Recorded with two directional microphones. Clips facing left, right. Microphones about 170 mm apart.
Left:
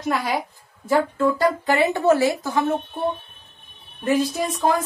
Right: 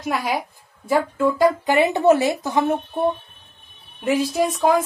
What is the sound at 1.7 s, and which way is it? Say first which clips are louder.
Speech: right 1 dB; 20° right (ahead or behind).